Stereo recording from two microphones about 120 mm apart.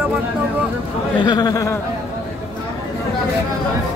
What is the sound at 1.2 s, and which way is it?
Speech, 35° left (ahead or behind).